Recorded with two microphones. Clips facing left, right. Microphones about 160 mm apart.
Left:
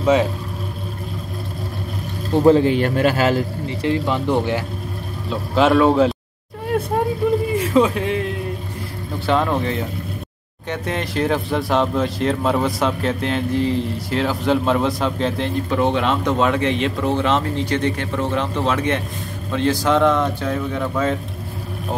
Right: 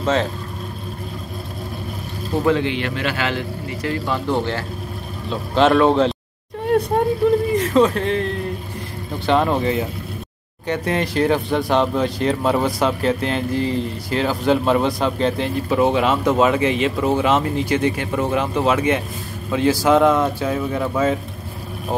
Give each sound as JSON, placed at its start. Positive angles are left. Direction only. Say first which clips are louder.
{"t": 0.0, "sound": "speech", "louder": "left 3 dB", "side_deg": 10}
{"t": 2.4, "sound": "a man's voice", "louder": "left 6 dB", "side_deg": 40}
{"t": 3.6, "sound": "speech", "louder": "left 2 dB", "side_deg": 25}
{"t": 5.3, "sound": "speech", "louder": "even", "side_deg": 5}
{"t": 7.5, "sound": "a man's voice", "louder": "right 1 dB", "side_deg": 10}